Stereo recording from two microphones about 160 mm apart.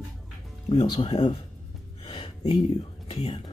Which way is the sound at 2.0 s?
35° left (ahead or behind).